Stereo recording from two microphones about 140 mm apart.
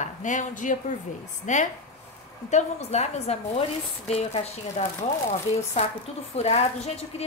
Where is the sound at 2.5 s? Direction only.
50° left (ahead or behind).